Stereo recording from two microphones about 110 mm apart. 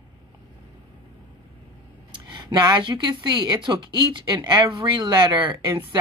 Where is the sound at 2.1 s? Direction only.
40° right (ahead or behind).